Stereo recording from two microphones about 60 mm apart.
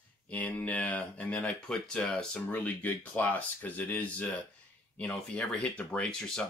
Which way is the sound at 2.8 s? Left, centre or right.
Left.